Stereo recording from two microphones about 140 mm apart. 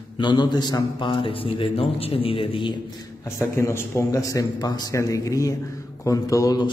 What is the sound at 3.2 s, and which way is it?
A man's voice, 20° left (ahead or behind).